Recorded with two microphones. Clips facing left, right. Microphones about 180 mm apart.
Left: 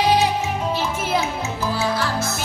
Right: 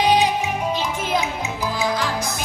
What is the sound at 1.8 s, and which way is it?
Music, 15° right (ahead or behind).